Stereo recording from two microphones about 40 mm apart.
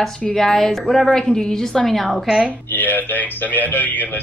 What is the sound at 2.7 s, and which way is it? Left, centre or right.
Speech, left.